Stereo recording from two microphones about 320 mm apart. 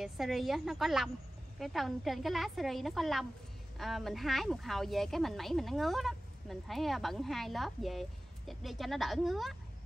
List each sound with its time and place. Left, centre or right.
0.0 s speech: centre